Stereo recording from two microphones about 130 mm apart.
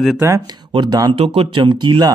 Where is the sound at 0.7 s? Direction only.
35° right (ahead or behind).